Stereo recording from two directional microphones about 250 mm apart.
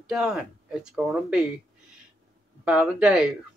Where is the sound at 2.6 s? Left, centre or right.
Centre.